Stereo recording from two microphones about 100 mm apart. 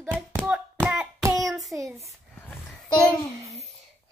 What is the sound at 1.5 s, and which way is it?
Child singing, centre (ahead or behind).